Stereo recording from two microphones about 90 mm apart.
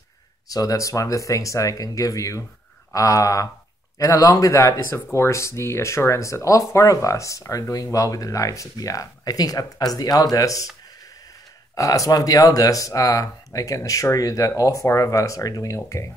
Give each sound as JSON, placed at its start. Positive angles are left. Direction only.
{"t": 0.5, "sound": "speech", "side_deg": 40}
{"t": 11.7, "sound": "speech", "side_deg": 40}